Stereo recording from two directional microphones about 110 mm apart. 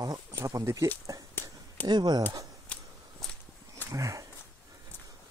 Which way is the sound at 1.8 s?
40° right (ahead or behind).